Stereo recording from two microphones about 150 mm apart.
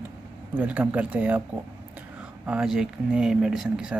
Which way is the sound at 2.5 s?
5° right (ahead or behind).